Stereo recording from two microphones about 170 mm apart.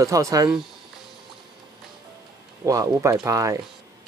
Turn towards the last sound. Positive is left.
turn(degrees=-20)  # may be behind; listen again after turning